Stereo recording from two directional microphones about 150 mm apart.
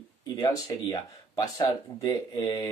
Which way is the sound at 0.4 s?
25° left (ahead or behind).